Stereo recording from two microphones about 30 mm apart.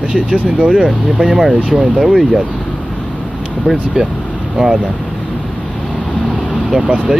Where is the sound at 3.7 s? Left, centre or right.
Right.